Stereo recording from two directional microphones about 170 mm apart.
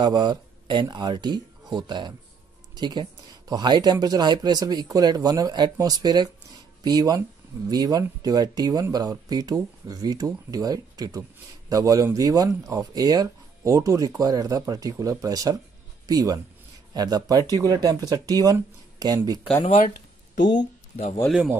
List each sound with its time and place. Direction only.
0.0 s speech: 25° right (ahead or behind)
20.5 s speech: 40° left (ahead or behind)
21.3 s speech: 5° right (ahead or behind)